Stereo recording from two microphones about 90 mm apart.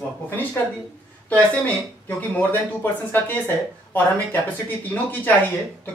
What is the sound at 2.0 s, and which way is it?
Speech, 20° left (ahead or behind).